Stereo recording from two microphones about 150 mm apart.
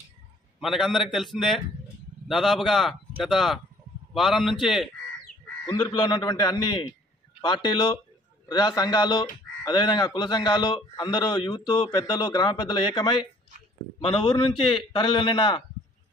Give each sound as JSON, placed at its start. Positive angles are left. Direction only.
{"t": 0.6, "sound": "a man's voice", "side_deg": 0}
{"t": 5.9, "sound": "a man's voice", "side_deg": 30}